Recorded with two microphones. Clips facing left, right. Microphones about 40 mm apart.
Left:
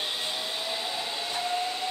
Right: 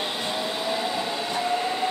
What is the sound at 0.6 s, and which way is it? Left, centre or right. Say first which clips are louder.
Train: right 6 dB; right.